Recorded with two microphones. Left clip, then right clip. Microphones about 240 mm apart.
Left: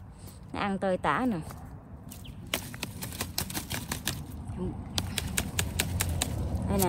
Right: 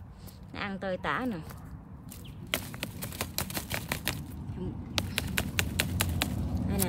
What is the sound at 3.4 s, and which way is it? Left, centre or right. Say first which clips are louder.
Typewriter: right 1 dB; centre.